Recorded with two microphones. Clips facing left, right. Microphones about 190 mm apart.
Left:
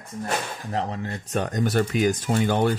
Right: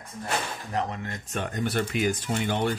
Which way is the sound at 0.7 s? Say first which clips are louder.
Left 2 dB; 30° left (ahead or behind).